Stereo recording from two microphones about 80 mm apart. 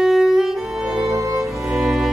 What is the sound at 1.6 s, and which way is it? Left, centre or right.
Music, centre.